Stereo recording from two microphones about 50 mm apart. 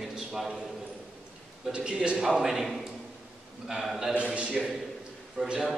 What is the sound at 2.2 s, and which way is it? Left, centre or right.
A man's voice, centre.